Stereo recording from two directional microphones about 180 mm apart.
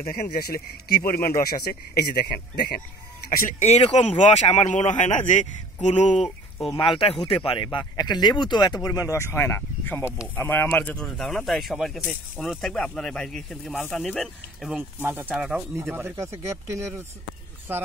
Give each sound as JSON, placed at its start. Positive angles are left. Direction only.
{"t": 0.1, "sound": "speech", "side_deg": 55}
{"t": 6.7, "sound": "speech", "side_deg": 30}